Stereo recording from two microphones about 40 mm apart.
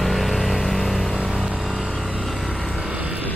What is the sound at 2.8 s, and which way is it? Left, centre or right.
Vehicle, right.